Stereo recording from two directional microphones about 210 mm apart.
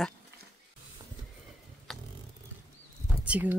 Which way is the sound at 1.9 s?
Centre (ahead or behind).